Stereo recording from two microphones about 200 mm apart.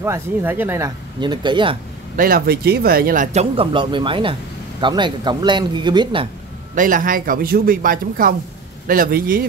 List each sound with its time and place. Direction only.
0.0 s speech: 10° right (ahead or behind)
2.1 s a man's voice: 45° right (ahead or behind)
3.5 s speech: 25° right (ahead or behind)
6.7 s a man's voice: 40° right (ahead or behind)